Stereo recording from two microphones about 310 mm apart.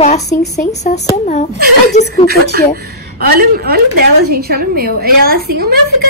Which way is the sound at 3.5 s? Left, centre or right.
Right.